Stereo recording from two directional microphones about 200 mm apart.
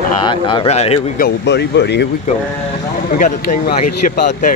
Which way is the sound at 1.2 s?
55° left (ahead or behind).